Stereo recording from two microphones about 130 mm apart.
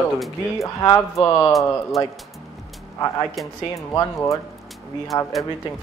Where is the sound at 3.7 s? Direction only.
25° left (ahead or behind).